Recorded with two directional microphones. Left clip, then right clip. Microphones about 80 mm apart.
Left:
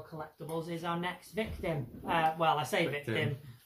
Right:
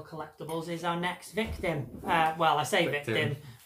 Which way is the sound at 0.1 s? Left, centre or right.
Centre.